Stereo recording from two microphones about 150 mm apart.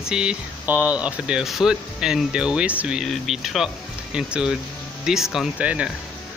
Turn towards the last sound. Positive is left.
turn(degrees=-10)  # may be behind; listen again after turning